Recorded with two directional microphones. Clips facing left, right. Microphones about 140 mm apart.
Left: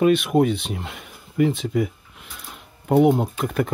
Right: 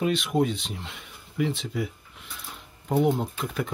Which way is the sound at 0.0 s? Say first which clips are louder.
Left 7 dB; 55° left (ahead or behind).